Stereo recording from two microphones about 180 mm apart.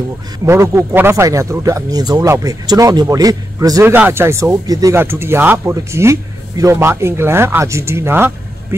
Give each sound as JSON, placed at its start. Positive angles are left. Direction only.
{"t": 0.5, "sound": "speech", "side_deg": -15}